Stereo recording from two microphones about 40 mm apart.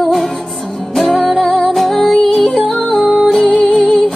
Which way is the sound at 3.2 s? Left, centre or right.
Centre.